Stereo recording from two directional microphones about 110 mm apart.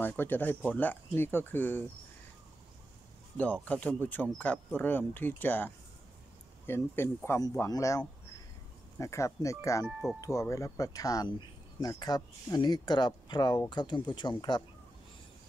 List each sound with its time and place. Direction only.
0.0 s speech: 15° left (ahead or behind)
3.6 s speech: 15° left (ahead or behind); by 14.6 s 40° left (ahead or behind)